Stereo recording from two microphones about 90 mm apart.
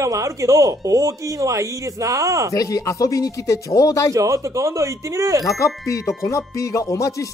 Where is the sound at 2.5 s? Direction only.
40° left (ahead or behind).